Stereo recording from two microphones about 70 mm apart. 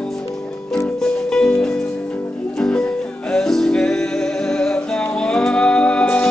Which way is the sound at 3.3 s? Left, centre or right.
Centre.